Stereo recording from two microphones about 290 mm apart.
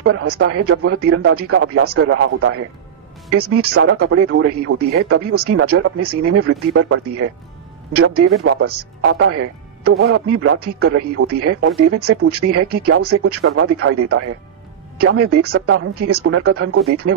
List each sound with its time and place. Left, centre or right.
0.0 s speech: right